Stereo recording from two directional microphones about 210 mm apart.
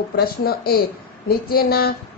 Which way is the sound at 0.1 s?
45° left (ahead or behind).